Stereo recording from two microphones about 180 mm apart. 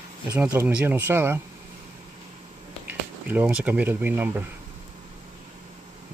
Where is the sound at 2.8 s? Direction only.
10° right (ahead or behind).